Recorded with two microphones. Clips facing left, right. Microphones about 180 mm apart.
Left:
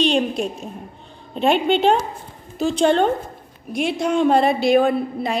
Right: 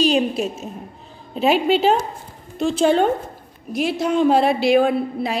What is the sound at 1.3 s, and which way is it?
A woman's voice, 5° right (ahead or behind).